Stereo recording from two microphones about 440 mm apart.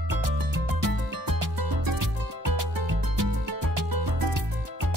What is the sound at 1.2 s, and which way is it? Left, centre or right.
Music, right.